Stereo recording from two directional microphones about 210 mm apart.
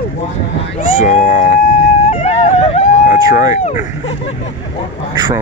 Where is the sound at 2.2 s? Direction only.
30° left (ahead or behind).